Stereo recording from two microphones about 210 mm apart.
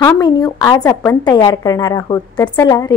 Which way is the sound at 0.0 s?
20° left (ahead or behind).